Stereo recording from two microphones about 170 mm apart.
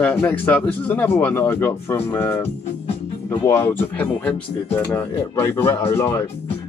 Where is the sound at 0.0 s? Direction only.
10° left (ahead or behind).